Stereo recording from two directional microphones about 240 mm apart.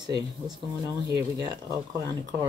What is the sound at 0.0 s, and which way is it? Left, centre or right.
Speech, centre.